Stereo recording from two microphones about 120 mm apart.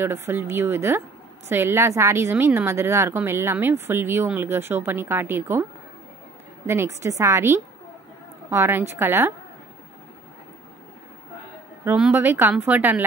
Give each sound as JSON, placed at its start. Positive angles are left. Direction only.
{"t": 0.0, "sound": "a woman's voice", "side_deg": -20}
{"t": 11.8, "sound": "speech", "side_deg": -10}